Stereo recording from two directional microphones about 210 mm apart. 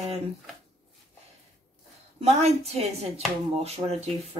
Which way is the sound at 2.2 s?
30° right (ahead or behind).